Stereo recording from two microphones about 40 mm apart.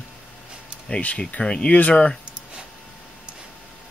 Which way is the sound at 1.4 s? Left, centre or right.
Left.